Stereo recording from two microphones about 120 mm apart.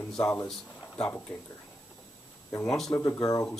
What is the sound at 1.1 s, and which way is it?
Speech, 15° left (ahead or behind).